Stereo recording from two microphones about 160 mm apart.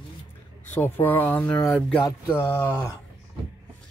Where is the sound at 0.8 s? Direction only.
15° left (ahead or behind).